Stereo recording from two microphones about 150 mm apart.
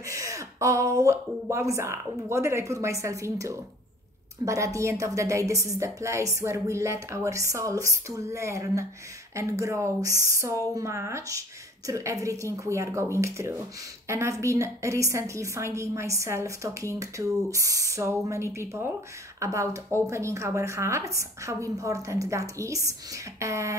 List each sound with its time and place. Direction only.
0.0 s a woman's voice: 20° right (ahead or behind)